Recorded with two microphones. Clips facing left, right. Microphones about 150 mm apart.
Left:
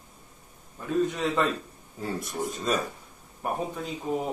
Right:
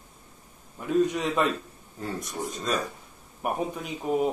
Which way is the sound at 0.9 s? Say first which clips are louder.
Right 2 dB; 15° right (ahead or behind).